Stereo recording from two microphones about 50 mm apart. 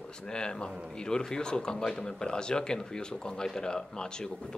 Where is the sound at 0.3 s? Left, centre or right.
Centre.